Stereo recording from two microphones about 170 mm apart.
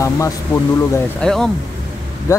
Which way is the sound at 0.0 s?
15° left (ahead or behind).